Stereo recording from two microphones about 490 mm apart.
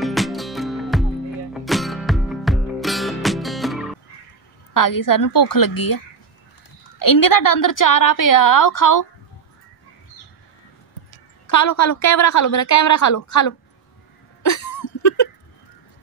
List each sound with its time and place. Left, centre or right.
0.0 s music: centre
4.7 s a woman's voice: left
11.4 s a woman's voice: left
14.4 s a sound: left